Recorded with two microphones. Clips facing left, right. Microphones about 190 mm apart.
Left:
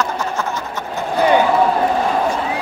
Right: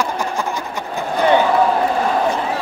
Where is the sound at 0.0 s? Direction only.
10° right (ahead or behind).